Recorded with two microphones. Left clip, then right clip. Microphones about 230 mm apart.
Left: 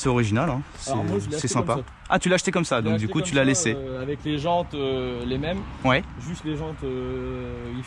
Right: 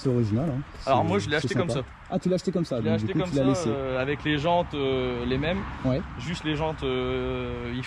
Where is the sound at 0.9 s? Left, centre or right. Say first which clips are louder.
Right 4 dB; centre.